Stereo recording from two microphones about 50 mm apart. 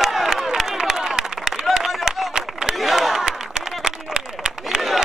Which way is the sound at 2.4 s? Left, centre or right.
Centre.